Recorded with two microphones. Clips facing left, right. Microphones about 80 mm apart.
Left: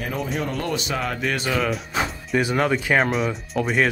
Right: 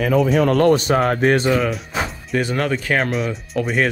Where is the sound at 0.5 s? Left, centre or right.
Right.